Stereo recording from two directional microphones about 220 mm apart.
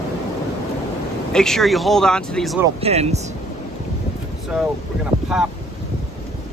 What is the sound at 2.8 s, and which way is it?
Speech, 30° right (ahead or behind).